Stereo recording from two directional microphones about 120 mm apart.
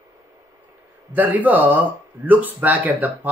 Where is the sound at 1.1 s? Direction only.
15° right (ahead or behind).